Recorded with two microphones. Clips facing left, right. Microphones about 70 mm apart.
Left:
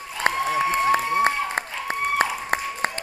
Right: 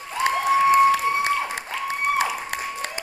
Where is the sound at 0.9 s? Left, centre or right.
Left.